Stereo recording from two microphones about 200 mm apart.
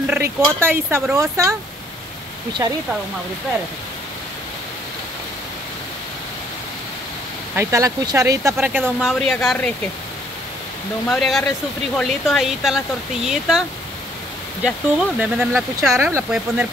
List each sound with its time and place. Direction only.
0.0 s speech: 10° right (ahead or behind)
2.6 s speech: 15° right (ahead or behind)
7.5 s speech: 15° right (ahead or behind)
9.2 s speech: centre (ahead or behind)
11.1 s speech: centre (ahead or behind)